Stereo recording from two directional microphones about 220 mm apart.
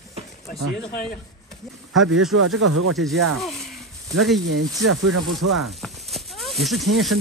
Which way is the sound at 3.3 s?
Centre (ahead or behind).